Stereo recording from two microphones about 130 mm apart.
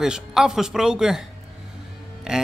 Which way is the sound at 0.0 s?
5° right (ahead or behind).